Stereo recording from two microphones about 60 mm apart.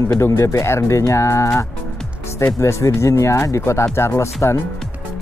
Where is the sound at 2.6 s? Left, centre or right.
Left.